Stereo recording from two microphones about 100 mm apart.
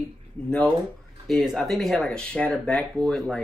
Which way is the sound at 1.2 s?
Centre (ahead or behind).